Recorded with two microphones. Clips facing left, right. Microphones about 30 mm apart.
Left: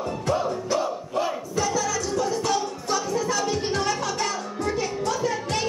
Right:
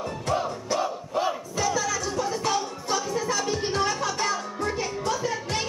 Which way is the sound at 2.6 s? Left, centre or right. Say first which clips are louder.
Left 2 dB; centre.